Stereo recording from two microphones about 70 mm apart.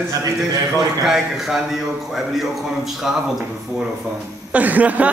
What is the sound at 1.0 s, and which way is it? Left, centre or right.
A man's voice, centre.